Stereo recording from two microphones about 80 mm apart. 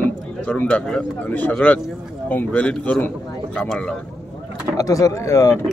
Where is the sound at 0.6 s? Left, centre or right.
Centre.